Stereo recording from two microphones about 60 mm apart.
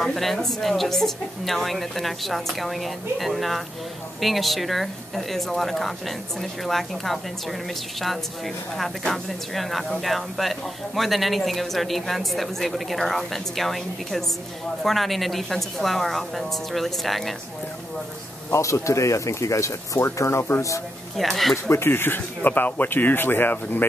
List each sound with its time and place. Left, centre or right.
0.0 s a woman's voice: centre
18.5 s speech: left
21.2 s a woman's voice: centre
21.6 s speech: left